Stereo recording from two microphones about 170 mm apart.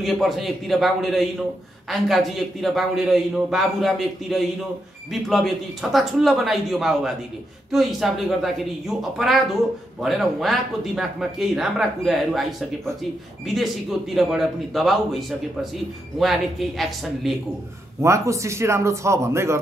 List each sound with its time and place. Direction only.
0.0 s speech: centre (ahead or behind)
18.0 s speech: 20° right (ahead or behind)